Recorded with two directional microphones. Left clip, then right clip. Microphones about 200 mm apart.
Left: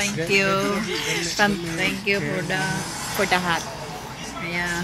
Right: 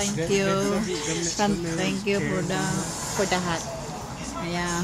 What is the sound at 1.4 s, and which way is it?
Music, 5° left (ahead or behind).